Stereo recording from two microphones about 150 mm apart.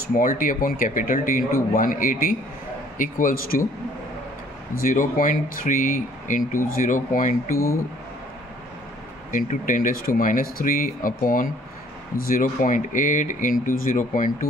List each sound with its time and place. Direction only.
0.1 s speech: 70° left (ahead or behind)
4.7 s speech: 70° left (ahead or behind)
7.5 s speech: 20° left (ahead or behind)
9.3 s speech: 60° left (ahead or behind)